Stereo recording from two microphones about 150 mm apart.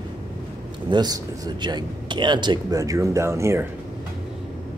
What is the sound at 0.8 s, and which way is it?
Speech, 30° right (ahead or behind).